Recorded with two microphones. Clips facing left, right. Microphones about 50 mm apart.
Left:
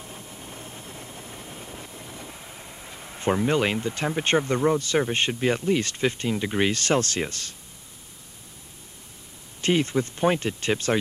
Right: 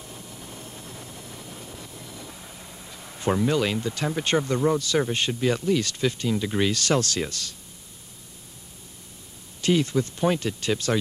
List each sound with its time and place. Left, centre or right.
0.0 s vehicle: left
3.3 s speech: left
4.7 s speech: left
9.6 s speech: left